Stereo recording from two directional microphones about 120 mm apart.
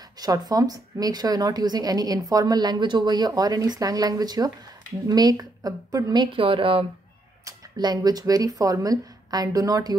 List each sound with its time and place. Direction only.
0.2 s a woman's voice: 30° right (ahead or behind)
6.3 s speech: 50° right (ahead or behind)
7.4 s speech: 35° right (ahead or behind)